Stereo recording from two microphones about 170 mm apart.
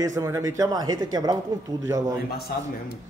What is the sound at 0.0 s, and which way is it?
Speech, 20° right (ahead or behind).